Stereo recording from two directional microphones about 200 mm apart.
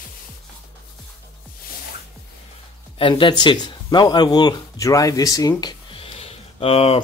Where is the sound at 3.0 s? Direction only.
25° left (ahead or behind).